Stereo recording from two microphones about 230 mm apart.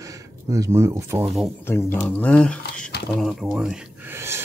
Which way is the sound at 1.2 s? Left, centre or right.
Centre.